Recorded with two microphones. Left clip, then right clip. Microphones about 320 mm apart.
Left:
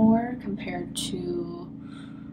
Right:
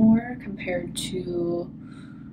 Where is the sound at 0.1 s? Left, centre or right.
Centre.